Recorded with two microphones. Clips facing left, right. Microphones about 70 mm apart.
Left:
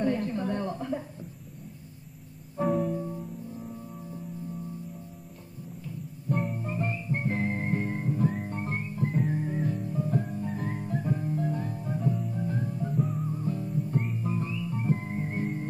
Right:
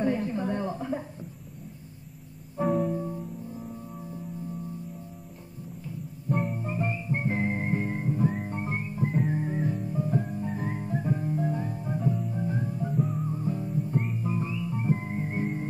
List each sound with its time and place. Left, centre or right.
0.0 s a sound: centre
2.5 s music: centre
6.2 s music: centre
13.3 s music: centre